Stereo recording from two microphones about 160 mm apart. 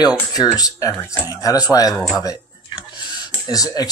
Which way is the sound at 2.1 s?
20° left (ahead or behind).